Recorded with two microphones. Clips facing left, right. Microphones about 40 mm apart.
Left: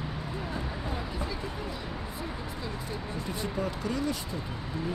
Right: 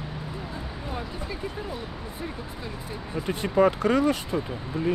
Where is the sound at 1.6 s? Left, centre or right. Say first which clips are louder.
Right 3 dB; centre.